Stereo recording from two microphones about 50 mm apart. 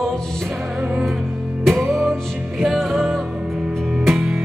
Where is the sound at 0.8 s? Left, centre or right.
Right.